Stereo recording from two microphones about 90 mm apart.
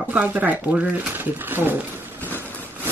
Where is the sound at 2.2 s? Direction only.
25° right (ahead or behind).